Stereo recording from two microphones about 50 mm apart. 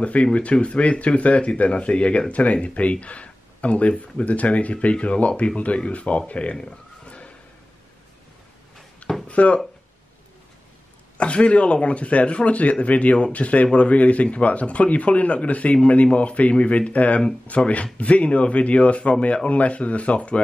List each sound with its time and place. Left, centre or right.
0.0 s speech: left
6.5 s a sound: centre
9.3 s speech: left
11.1 s speech: left